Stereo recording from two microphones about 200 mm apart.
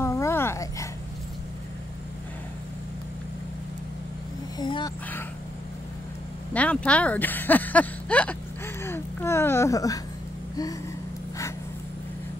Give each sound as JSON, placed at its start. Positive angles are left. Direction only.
{"t": 0.0, "sound": "dog", "side_deg": 15}
{"t": 4.6, "sound": "a sound", "side_deg": 20}
{"t": 6.5, "sound": "speech", "side_deg": 5}